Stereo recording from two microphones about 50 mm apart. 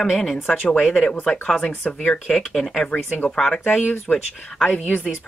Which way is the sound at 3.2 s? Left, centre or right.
Centre.